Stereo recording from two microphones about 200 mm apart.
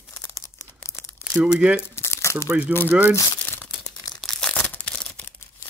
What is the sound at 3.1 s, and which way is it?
Crumpling, 10° left (ahead or behind).